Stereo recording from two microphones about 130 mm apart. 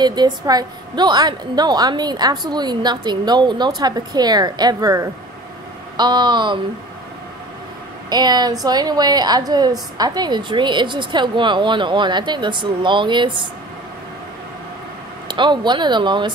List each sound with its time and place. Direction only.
0.0 s a woman's voice: 35° right (ahead or behind)
8.1 s a woman's voice: 30° right (ahead or behind)
15.2 s a woman's voice: 35° right (ahead or behind)